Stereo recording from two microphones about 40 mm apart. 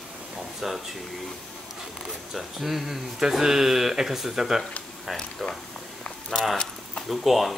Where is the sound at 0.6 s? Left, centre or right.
Centre.